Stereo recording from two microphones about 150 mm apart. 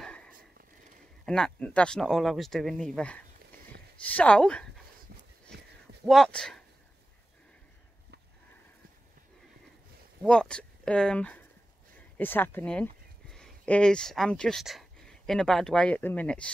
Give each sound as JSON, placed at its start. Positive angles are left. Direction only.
{"t": 0.0, "sound": "a sound", "side_deg": 5}
{"t": 1.2, "sound": "speech", "side_deg": 5}
{"t": 6.0, "sound": "speech", "side_deg": 5}
{"t": 10.2, "sound": "speech", "side_deg": 5}